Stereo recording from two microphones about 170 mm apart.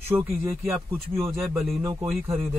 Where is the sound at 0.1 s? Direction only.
10° right (ahead or behind).